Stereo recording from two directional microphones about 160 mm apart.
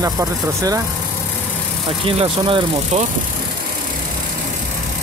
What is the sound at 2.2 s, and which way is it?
Speech, 35° right (ahead or behind).